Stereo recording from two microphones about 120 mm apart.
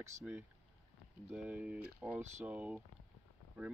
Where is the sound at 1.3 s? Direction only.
10° right (ahead or behind).